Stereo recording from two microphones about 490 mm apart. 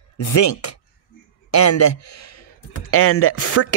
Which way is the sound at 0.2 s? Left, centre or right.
Left.